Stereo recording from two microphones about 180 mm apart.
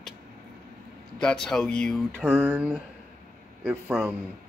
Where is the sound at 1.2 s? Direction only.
5° left (ahead or behind).